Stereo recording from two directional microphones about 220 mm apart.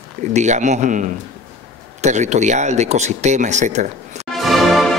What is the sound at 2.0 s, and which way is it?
Speech, 30° right (ahead or behind).